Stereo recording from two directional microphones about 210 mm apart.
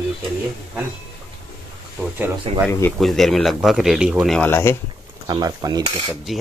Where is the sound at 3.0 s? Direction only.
Centre (ahead or behind).